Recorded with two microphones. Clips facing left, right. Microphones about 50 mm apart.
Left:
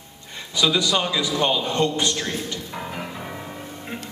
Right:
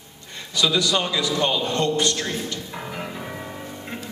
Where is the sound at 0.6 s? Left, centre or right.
Centre.